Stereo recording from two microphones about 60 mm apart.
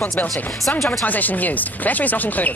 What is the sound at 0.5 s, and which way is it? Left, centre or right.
Speech, centre.